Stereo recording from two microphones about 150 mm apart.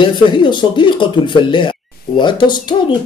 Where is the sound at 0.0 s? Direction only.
30° left (ahead or behind).